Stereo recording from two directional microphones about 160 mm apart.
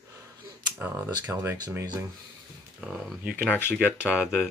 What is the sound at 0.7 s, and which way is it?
Speech, 10° right (ahead or behind).